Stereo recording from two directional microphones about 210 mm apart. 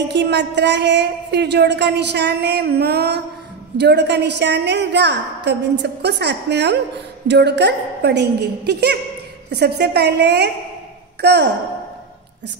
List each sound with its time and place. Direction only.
0.1 s a woman's voice: 55° right (ahead or behind)